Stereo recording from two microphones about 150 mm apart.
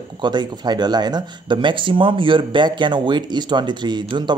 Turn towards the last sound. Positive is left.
turn(degrees=-30)  # may be behind; listen again after turning